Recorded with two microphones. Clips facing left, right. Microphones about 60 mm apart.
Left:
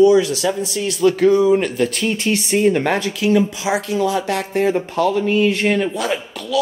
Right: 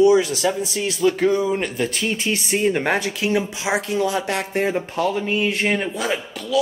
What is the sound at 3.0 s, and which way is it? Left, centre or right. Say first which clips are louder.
Speech: left 5 dB; right.